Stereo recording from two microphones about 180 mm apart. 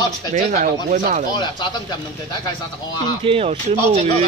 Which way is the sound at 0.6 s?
50° right (ahead or behind).